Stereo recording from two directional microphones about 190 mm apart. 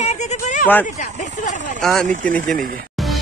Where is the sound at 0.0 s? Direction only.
40° left (ahead or behind).